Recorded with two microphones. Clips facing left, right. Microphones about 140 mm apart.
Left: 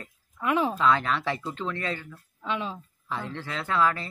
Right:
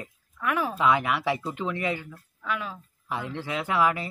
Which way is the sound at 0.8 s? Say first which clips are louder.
Even; 15° right (ahead or behind).